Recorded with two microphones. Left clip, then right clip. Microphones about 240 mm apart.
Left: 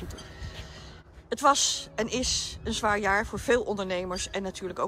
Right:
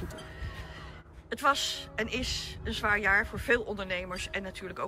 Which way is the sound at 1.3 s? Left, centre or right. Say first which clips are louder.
Left 5 dB; centre.